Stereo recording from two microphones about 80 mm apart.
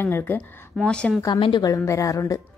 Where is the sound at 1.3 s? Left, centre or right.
Left.